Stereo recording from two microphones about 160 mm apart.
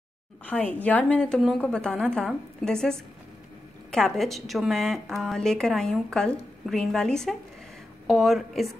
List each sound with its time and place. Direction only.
0.5 s a woman's voice: 10° left (ahead or behind)